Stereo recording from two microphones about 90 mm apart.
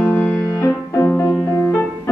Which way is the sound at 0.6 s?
35° left (ahead or behind).